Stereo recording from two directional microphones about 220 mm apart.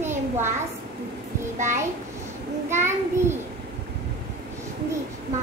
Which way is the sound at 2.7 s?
10° right (ahead or behind).